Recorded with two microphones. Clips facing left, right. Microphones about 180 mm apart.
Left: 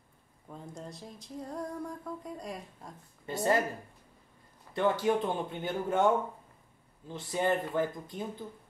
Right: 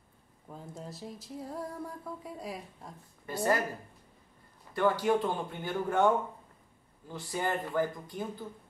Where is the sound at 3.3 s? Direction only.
25° left (ahead or behind).